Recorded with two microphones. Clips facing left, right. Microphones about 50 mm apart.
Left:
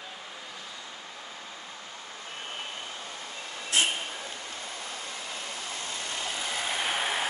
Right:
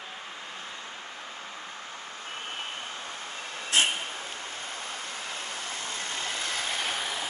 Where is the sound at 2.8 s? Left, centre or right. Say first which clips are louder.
Right 2 dB; right.